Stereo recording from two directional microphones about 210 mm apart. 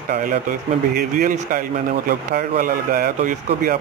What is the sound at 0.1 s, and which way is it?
Speech, 40° right (ahead or behind).